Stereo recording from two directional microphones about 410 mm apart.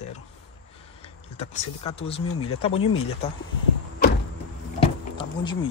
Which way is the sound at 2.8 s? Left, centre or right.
Left.